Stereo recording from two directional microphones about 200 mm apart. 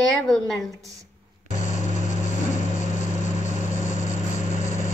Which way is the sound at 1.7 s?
35° left (ahead or behind).